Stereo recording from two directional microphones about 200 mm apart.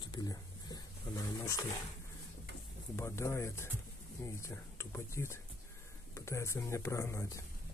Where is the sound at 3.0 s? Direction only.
15° left (ahead or behind).